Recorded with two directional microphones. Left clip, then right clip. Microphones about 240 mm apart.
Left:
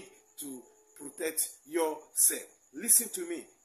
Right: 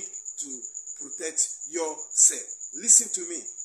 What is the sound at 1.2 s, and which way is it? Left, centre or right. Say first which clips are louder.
Speech: right 5 dB; centre.